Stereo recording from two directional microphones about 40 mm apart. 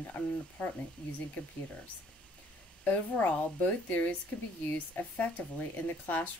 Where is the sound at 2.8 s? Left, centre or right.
Left.